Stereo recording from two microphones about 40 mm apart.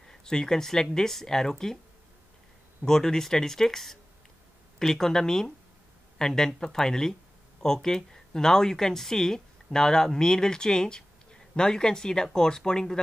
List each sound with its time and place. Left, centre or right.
0.0 s speech: centre
2.8 s speech: centre